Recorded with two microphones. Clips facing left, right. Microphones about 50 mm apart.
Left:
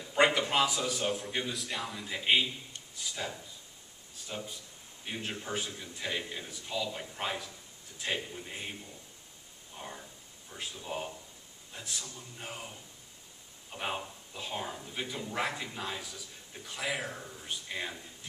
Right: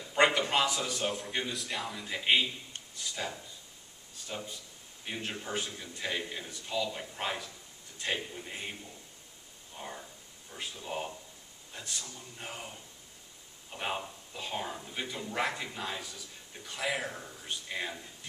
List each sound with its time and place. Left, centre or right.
0.0 s speech: centre
9.8 s a sound: centre
10.5 s speech: centre